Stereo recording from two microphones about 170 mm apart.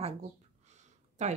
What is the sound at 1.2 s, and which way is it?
Speech, 40° right (ahead or behind).